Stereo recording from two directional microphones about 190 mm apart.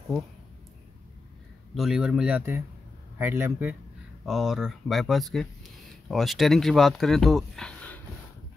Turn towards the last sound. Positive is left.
turn(degrees=5)  # may be behind; listen again after turning